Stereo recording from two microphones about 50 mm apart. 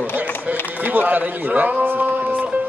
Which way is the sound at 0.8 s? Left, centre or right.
Right.